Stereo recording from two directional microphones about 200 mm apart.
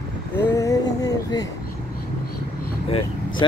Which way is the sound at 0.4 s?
15° left (ahead or behind).